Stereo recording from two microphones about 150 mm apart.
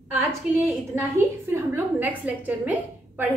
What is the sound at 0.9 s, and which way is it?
A woman's voice, 15° right (ahead or behind).